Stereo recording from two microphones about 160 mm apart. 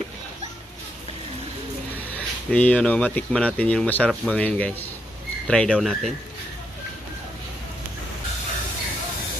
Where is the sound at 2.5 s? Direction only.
5° left (ahead or behind).